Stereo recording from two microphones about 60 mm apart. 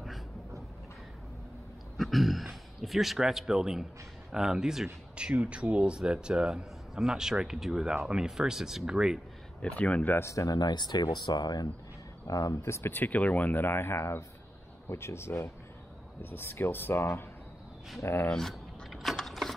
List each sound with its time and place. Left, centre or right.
2.0 s a man's voice: centre
9.6 s speech: left
10.1 s speech: left
12.3 s speech: left
12.6 s speech: left
12.9 s speech: left
18.3 s mechanisms: centre